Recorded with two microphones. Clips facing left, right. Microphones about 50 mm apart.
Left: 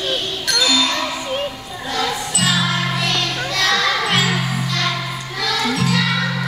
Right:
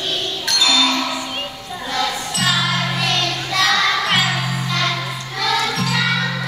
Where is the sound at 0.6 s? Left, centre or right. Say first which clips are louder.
Right 2 dB; centre.